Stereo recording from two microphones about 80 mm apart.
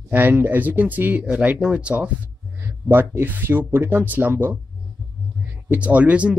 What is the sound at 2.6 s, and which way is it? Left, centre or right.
Speech, right.